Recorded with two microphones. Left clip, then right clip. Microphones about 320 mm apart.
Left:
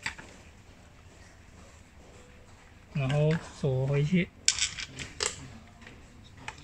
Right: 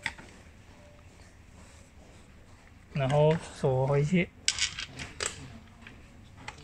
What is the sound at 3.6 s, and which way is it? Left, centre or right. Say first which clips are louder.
Speech: right 4 dB; right.